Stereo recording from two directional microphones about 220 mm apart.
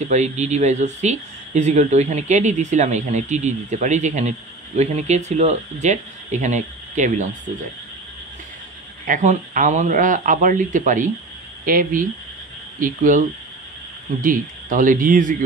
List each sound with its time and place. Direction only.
0.0 s speech: 30° right (ahead or behind)
9.0 s speech: 35° right (ahead or behind)
14.2 s speech: 35° right (ahead or behind)